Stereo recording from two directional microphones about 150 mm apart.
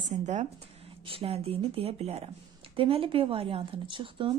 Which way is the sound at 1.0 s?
40° right (ahead or behind).